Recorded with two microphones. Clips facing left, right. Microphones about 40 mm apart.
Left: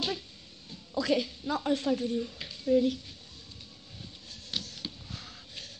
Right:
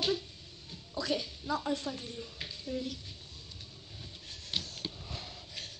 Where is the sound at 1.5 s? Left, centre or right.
Left.